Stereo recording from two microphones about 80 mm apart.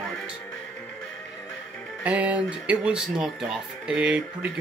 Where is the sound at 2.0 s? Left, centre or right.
Centre.